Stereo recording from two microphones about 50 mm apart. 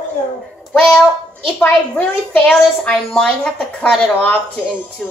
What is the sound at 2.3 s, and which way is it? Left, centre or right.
Speech, left.